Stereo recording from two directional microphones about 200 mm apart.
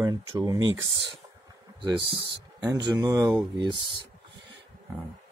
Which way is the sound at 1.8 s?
20° right (ahead or behind).